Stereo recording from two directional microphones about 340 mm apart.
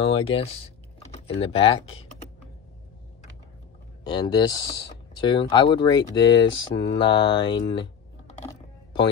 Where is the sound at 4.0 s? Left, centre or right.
Centre.